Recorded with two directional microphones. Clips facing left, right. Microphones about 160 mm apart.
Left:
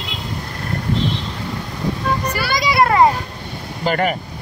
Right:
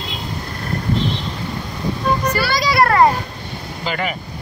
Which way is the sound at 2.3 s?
20° left (ahead or behind).